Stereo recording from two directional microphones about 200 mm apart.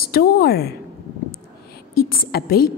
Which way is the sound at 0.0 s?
50° left (ahead or behind).